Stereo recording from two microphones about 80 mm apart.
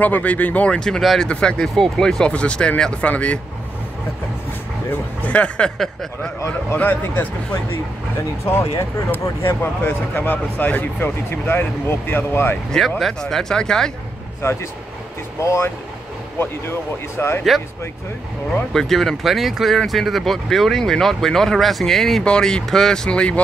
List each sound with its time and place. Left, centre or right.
0.0 s speech: centre
4.8 s speech: centre
6.8 s speech: left
13.0 s speech: centre
14.4 s speech: left
17.2 s speech: left
18.5 s speech: centre